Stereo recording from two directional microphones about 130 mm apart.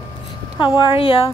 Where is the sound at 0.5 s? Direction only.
40° left (ahead or behind).